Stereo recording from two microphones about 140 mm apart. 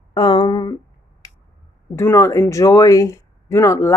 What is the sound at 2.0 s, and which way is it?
A woman's voice, 20° left (ahead or behind).